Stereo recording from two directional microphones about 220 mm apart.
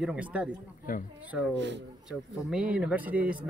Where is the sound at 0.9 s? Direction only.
40° left (ahead or behind).